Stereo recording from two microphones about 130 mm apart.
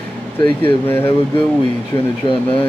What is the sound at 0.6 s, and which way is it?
Speech, 15° left (ahead or behind).